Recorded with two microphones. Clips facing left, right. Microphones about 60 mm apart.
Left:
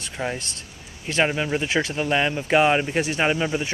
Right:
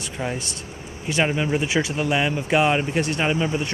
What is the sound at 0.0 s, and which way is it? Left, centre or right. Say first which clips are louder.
Speech: even; centre.